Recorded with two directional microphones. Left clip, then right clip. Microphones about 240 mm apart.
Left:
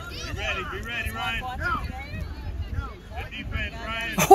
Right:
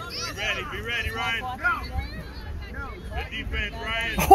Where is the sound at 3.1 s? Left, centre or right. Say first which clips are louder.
Right 3 dB; right.